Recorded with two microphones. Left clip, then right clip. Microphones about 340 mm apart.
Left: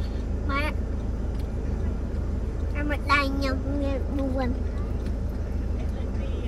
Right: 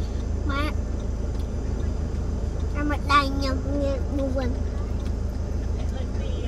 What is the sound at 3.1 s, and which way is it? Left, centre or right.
Child singing, left.